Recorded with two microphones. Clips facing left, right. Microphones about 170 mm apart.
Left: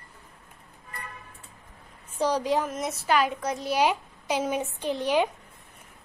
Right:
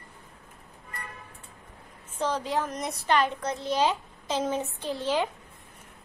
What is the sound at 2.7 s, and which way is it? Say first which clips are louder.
A woman's voice: left 1 dB; centre (ahead or behind).